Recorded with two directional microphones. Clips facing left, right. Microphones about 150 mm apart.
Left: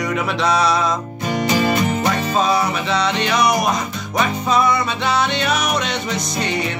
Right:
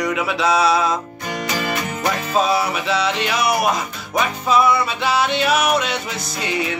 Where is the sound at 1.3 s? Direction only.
25° left (ahead or behind).